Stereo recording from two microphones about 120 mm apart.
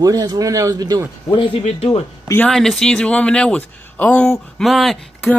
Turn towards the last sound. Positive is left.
turn(degrees=0)  # may be behind; listen again after turning